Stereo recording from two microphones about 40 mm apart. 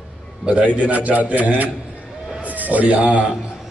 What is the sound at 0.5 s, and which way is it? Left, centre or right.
A man's voice, right.